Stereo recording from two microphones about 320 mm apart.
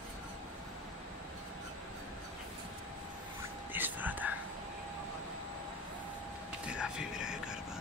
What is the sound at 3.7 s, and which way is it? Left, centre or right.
Whispering, centre.